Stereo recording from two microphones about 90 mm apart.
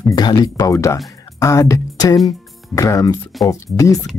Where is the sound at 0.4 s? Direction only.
40° left (ahead or behind).